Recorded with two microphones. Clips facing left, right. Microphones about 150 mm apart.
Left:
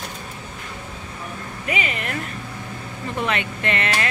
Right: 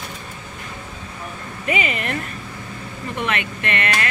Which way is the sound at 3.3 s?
25° left (ahead or behind).